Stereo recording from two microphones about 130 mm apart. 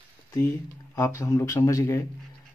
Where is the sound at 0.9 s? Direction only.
20° left (ahead or behind).